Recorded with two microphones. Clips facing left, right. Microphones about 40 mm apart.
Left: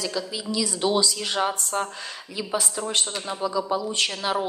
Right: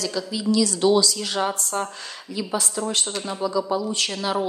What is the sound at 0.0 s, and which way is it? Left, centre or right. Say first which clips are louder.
A woman's voice: right 3 dB; centre.